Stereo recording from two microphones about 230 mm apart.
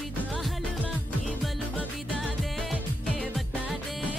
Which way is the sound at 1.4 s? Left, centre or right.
Centre.